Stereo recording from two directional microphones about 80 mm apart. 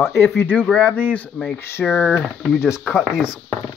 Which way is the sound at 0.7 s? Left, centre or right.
Centre.